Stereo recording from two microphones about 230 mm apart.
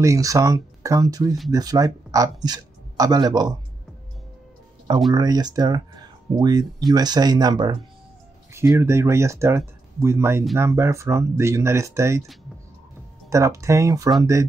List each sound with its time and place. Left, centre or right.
0.0 s speech: centre
5.1 s speech: centre
13.3 s speech: centre